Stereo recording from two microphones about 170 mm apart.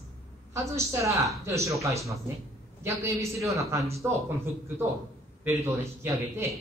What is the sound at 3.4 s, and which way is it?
A woman's voice, 20° right (ahead or behind).